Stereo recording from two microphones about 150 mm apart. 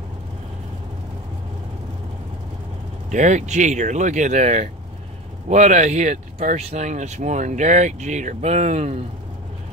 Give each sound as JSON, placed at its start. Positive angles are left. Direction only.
{"t": 3.1, "sound": "speech", "side_deg": -55}